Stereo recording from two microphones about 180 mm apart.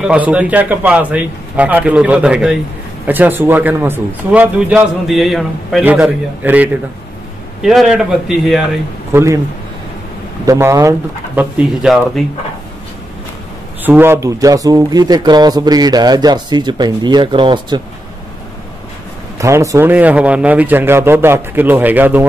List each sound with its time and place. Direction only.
0.0 s a man's voice: 5° right (ahead or behind)
9.1 s a man's voice: 15° right (ahead or behind)
10.4 s a man's voice: 20° right (ahead or behind)
13.8 s speech: 10° right (ahead or behind); by 17.8 s 25° right (ahead or behind)
19.3 s a man's voice: 15° right (ahead or behind)